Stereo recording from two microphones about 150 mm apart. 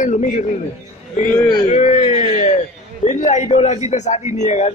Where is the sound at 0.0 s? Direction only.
55° left (ahead or behind).